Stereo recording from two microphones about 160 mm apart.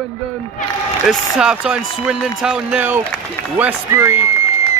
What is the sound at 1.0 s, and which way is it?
Speech, 5° right (ahead or behind).